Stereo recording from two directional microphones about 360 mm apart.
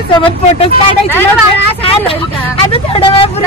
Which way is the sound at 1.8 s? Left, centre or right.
Centre.